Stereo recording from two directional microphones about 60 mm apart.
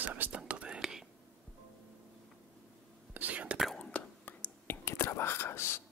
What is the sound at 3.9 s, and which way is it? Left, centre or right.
Whispering, left.